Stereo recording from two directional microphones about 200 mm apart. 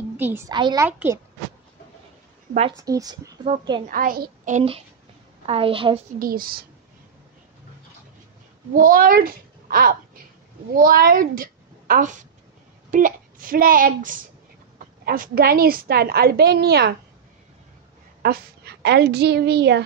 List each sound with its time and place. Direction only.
0.2 s a child's voice: 10° right (ahead or behind)
0.8 s a child's voice: 10° right (ahead or behind)
2.7 s a child's voice: 15° right (ahead or behind)
3.9 s a child's voice: 45° right (ahead or behind); by 5.9 s 25° right (ahead or behind)
6.1 s a woman's voice: 45° right (ahead or behind)
8.7 s a child's voice: 45° right (ahead or behind)
18.2 s a woman's voice: 50° right (ahead or behind)